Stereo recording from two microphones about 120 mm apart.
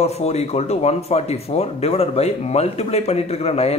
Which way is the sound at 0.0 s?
60° left (ahead or behind).